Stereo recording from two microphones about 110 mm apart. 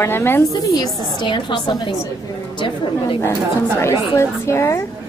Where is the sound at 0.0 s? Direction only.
20° left (ahead or behind).